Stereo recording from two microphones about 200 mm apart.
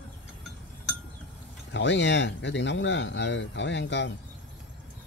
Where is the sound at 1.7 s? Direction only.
65° left (ahead or behind).